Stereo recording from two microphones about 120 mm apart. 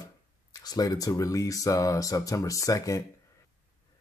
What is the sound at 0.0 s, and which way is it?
Speech, 30° left (ahead or behind).